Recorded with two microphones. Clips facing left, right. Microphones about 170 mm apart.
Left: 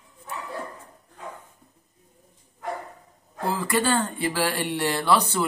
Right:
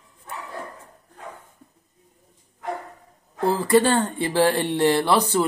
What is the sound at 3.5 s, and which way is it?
Speech, 30° right (ahead or behind).